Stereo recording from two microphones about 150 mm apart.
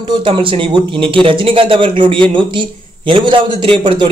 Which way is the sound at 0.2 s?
35° right (ahead or behind).